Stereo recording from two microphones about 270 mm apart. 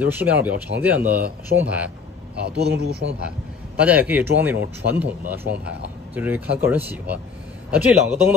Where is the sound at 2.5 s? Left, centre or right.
Right.